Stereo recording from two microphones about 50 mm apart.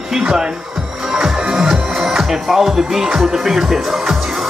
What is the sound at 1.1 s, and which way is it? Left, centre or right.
Music, centre.